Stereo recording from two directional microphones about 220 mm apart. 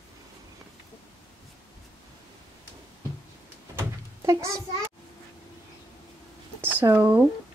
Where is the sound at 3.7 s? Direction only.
15° right (ahead or behind).